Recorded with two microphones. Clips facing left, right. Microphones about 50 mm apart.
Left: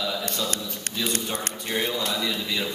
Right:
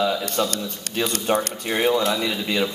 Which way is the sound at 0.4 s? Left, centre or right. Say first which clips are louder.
Right 5 dB; right.